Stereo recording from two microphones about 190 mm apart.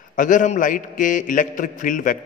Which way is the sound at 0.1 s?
40° left (ahead or behind).